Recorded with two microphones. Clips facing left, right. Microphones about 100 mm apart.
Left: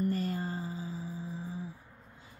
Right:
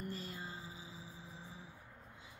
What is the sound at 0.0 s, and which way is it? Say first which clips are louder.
Music: left 13 dB; 50° left (ahead or behind).